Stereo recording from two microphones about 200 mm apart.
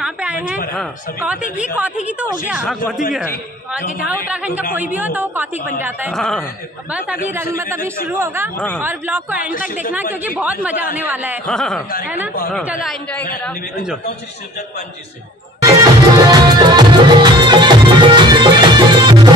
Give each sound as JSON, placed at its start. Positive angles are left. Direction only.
{"t": 0.0, "sound": "a sound", "side_deg": -5}
{"t": 0.7, "sound": "speech", "side_deg": -5}
{"t": 4.3, "sound": "speech", "side_deg": -5}
{"t": 6.1, "sound": "speech", "side_deg": 0}
{"t": 8.5, "sound": "a woman's voice", "side_deg": 10}
{"t": 8.8, "sound": "speech", "side_deg": -10}
{"t": 11.4, "sound": "speech", "side_deg": 5}
{"t": 15.6, "sound": "music", "side_deg": -15}